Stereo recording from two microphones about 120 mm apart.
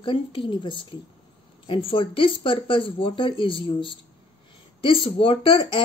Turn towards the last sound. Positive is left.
turn(degrees=45)  # may be behind; listen again after turning